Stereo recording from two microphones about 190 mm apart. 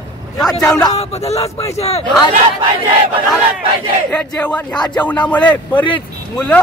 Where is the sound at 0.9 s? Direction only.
35° left (ahead or behind).